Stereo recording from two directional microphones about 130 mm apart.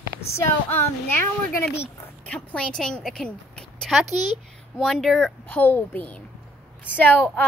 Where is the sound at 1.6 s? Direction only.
15° left (ahead or behind).